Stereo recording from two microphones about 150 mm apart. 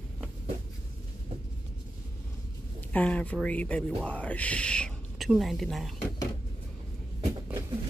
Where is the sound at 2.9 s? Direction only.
10° left (ahead or behind).